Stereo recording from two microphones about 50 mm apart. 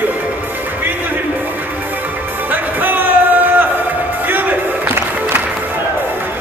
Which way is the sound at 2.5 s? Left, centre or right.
Right.